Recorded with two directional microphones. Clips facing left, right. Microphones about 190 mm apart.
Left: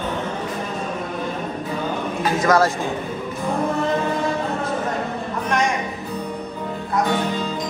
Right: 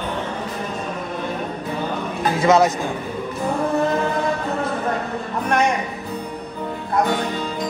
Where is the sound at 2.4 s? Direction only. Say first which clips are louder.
Right 2 dB; 20° right (ahead or behind).